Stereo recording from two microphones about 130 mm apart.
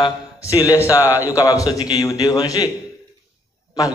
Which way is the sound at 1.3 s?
25° left (ahead or behind).